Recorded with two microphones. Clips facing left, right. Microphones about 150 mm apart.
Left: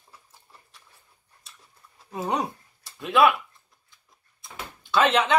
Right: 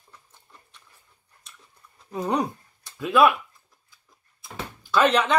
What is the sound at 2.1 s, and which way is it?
Speech, 5° left (ahead or behind).